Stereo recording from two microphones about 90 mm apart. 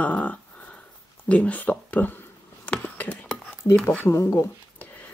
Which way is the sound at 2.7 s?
15° left (ahead or behind).